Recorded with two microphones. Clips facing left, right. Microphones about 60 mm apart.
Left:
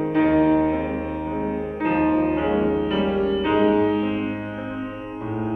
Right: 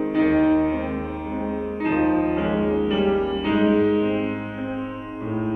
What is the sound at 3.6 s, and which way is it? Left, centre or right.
Music, centre.